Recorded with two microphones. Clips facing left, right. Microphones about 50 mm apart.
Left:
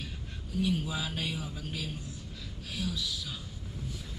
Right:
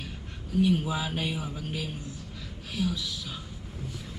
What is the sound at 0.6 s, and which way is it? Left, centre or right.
A man's voice, right.